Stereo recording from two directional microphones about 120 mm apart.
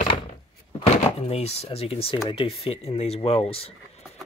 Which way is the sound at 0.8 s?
60° left (ahead or behind).